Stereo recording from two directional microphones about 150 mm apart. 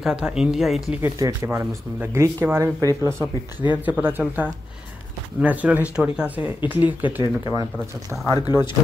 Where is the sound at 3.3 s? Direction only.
30° left (ahead or behind).